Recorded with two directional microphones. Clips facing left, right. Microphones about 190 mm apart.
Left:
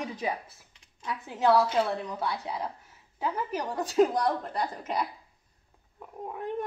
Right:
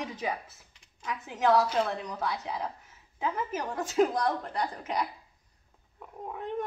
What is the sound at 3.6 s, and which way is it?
Speech, 15° left (ahead or behind).